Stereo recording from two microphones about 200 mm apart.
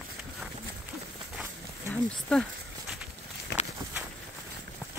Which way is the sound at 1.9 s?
5° left (ahead or behind).